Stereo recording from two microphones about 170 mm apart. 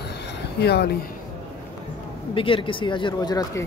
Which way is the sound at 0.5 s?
75° left (ahead or behind).